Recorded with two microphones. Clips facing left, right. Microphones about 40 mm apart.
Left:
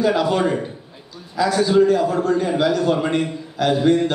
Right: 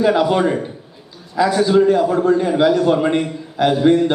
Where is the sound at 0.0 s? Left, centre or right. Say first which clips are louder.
Right 3 dB; right.